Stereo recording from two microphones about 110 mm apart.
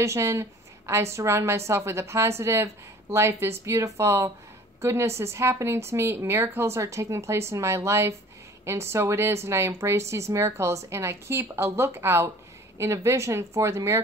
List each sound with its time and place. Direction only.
0.0 s speech: 25° right (ahead or behind)